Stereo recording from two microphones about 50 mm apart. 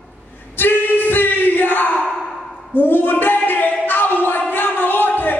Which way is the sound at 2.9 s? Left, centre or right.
Left.